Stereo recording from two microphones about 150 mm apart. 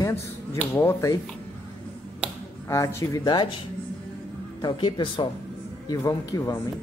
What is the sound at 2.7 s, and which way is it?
Speech, 20° left (ahead or behind).